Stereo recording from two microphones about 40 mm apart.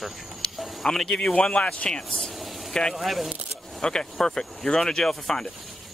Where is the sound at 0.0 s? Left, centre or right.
Centre.